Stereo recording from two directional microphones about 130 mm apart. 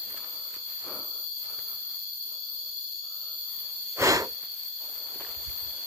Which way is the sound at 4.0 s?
25° right (ahead or behind).